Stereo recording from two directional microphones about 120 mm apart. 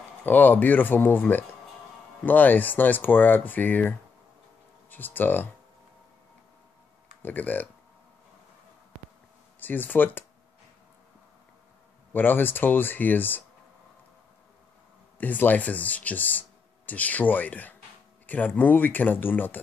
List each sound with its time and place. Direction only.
0.2 s speech: 15° left (ahead or behind)
4.9 s speech: 15° left (ahead or behind)
7.2 s speech: 15° left (ahead or behind)
9.6 s speech: 15° left (ahead or behind)
12.1 s speech: 15° left (ahead or behind)
15.1 s speech: 15° left (ahead or behind)